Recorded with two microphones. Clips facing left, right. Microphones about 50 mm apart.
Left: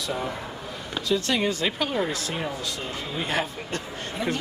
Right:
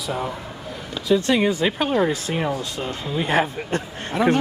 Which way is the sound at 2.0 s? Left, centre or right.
Right.